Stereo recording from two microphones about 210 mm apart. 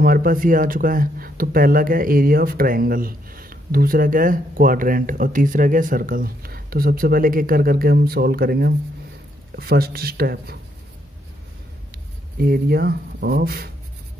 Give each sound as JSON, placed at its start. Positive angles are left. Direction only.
{"t": 0.0, "sound": "speech", "side_deg": -45}
{"t": 12.4, "sound": "speech", "side_deg": -45}